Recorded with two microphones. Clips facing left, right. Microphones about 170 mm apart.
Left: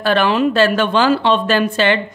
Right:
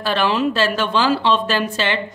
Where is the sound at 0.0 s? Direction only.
55° left (ahead or behind).